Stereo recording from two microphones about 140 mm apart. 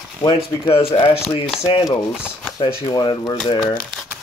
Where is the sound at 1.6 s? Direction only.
35° left (ahead or behind).